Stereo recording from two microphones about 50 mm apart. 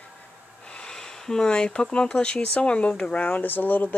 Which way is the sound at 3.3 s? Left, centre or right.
Left.